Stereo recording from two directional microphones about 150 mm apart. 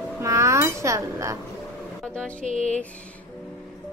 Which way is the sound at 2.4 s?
55° right (ahead or behind).